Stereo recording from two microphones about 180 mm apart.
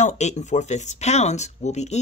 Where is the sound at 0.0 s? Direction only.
40° left (ahead or behind).